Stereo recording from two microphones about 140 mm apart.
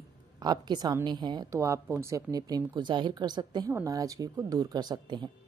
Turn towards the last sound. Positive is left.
turn(degrees=-30)  # may be behind; listen again after turning